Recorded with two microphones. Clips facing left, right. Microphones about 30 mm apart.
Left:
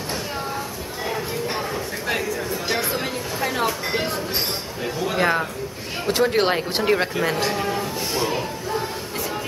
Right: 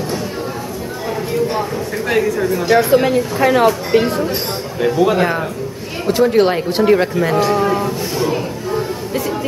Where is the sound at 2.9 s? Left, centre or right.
Right.